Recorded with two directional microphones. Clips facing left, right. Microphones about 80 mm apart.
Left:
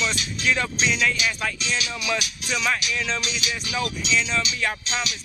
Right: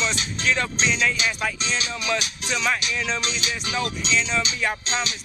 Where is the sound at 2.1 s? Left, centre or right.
Right.